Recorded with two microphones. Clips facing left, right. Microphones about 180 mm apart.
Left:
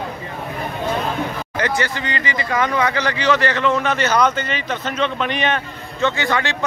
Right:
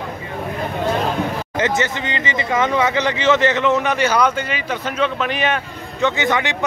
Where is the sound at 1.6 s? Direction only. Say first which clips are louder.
Right 2 dB; 20° right (ahead or behind); by 5.6 s 5° right (ahead or behind).